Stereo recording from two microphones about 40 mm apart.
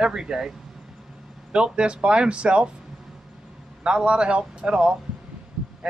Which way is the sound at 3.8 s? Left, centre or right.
Right.